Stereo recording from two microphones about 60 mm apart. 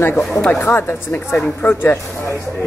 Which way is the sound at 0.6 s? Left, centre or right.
Left.